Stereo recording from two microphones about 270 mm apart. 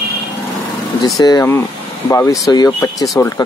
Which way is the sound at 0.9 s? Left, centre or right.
Centre.